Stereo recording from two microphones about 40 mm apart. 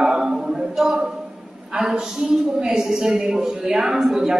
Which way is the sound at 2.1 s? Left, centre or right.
Centre.